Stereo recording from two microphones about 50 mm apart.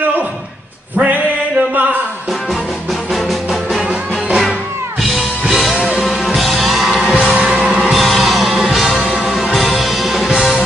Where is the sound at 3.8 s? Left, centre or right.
Centre.